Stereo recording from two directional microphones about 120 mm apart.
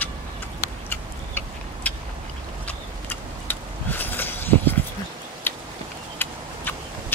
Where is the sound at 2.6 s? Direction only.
15° left (ahead or behind).